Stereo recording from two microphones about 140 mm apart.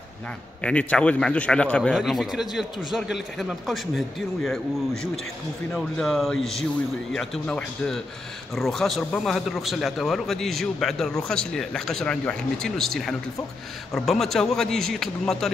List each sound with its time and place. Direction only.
0.6 s a man's voice: 10° left (ahead or behind)
5.9 s a man's voice: centre (ahead or behind)